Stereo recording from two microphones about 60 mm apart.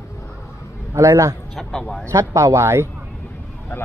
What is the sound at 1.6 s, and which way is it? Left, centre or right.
Speech, centre.